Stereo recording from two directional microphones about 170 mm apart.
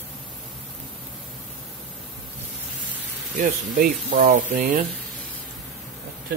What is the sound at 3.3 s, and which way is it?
Speech, 55° right (ahead or behind).